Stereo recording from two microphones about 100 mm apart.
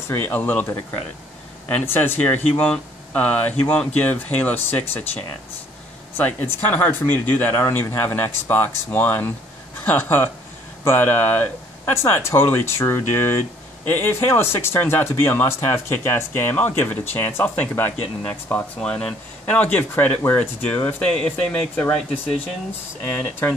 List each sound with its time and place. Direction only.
0.1 s speech: 20° left (ahead or behind)
1.7 s speech: 15° left (ahead or behind)
7.5 s speech: 25° left (ahead or behind)
23.0 s speech: 20° left (ahead or behind)